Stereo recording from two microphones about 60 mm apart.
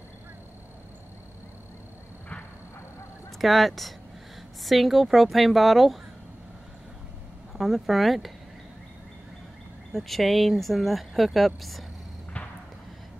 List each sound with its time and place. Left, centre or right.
3.3 s speech: centre
7.5 s speech: centre
9.9 s speech: centre